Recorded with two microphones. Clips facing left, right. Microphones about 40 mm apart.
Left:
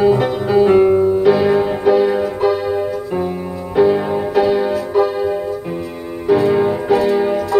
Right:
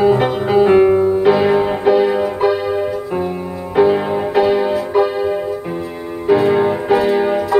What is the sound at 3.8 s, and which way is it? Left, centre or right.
Music, right.